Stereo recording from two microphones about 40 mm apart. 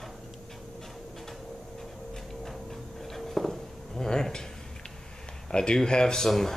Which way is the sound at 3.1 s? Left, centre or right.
Centre.